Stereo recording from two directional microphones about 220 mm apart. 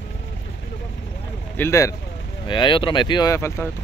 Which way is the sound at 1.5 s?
10° left (ahead or behind).